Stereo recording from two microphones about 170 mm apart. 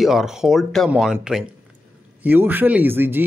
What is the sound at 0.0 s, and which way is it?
Speech, centre (ahead or behind).